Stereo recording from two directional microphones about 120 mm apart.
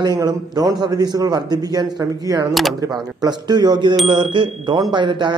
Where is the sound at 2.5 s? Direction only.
Centre (ahead or behind).